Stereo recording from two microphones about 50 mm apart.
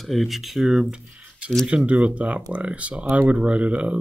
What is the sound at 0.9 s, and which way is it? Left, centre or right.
Speech, centre.